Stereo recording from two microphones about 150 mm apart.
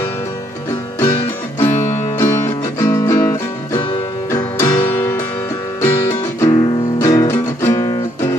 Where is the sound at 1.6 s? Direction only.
15° left (ahead or behind).